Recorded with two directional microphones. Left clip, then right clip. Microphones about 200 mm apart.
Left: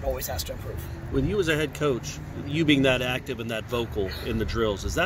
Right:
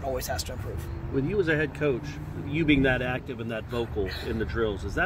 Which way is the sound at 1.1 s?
50° left (ahead or behind).